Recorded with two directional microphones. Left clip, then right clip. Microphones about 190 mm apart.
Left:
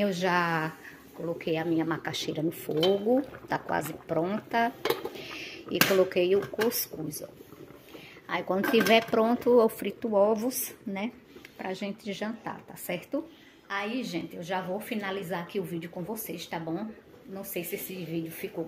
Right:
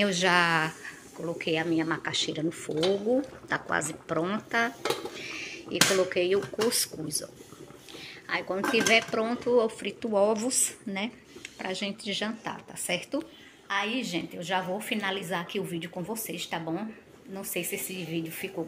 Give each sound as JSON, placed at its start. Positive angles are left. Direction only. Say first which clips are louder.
{"t": 0.0, "sound": "speech", "louder": "right 3 dB", "side_deg": 5}
{"t": 5.1, "sound": "dishes", "louder": "right 2 dB", "side_deg": 15}
{"t": 5.9, "sound": "speech", "louder": "left 1 dB", "side_deg": 15}
{"t": 8.3, "sound": "speech", "louder": "left 1 dB", "side_deg": 20}
{"t": 10.1, "sound": "a woman's voice", "louder": "even", "side_deg": 10}